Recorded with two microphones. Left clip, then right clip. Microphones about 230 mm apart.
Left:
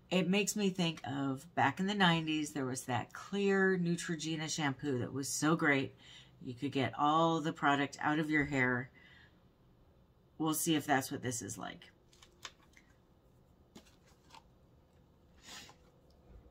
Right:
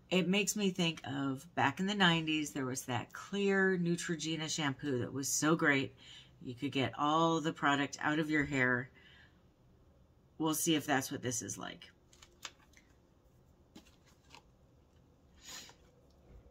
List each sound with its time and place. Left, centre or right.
0.1 s speech: centre
10.3 s speech: centre